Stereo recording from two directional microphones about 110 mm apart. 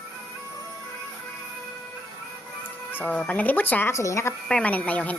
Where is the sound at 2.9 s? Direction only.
15° left (ahead or behind).